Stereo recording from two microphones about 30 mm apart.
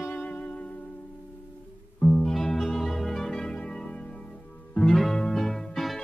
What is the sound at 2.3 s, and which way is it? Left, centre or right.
Music, centre.